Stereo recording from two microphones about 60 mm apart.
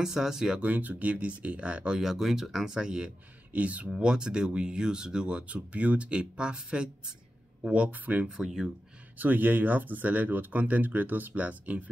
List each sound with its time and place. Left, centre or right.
0.0 s speech: centre
0.6 s speech: right
2.0 s speech: centre
3.5 s speech: right
8.4 s speech: centre
9.2 s speech: right